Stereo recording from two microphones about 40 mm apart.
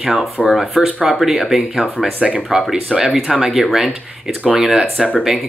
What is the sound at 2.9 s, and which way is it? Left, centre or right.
Speech, centre.